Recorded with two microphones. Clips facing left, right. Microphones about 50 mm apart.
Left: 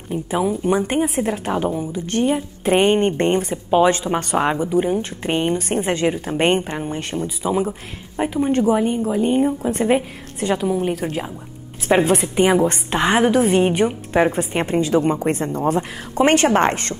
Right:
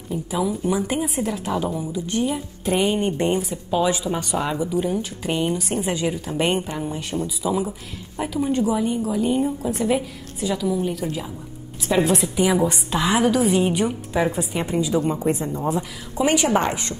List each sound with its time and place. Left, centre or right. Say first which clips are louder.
0.1 s speech: left 3 dB; left
3.7 s a woman's voice: left 5 dB; left
7.4 s a woman's voice: left 4 dB; left